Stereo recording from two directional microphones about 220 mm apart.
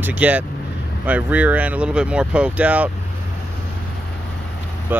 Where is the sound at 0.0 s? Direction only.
5° right (ahead or behind).